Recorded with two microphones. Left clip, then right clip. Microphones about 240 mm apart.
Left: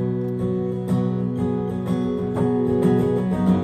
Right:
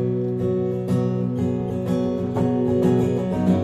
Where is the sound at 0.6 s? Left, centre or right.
Left.